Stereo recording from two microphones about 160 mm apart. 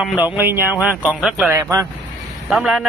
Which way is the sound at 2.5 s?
5° right (ahead or behind).